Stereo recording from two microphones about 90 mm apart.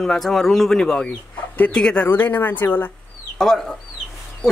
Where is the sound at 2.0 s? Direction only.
20° left (ahead or behind).